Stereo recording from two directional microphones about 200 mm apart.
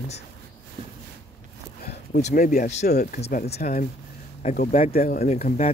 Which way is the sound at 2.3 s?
45° left (ahead or behind).